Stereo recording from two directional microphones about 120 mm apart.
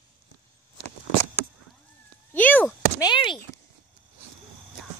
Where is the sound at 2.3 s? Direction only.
15° left (ahead or behind).